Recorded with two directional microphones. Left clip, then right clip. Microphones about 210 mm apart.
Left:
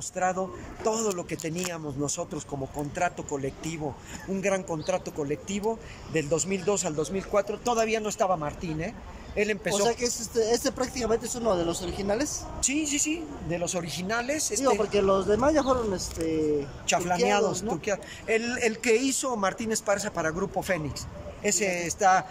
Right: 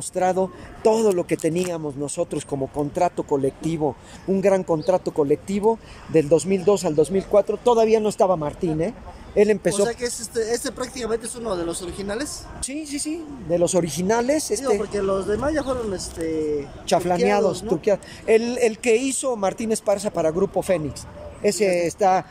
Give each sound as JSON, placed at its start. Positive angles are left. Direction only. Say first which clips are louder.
{"t": 0.1, "sound": "speech", "louder": "right 7 dB", "side_deg": -20}
{"t": 9.8, "sound": "speech", "louder": "right 1 dB", "side_deg": 0}
{"t": 12.6, "sound": "speech", "louder": "left 2 dB", "side_deg": -25}
{"t": 14.8, "sound": "speech", "louder": "even", "side_deg": 0}
{"t": 16.8, "sound": "speech", "louder": "right 6 dB", "side_deg": -25}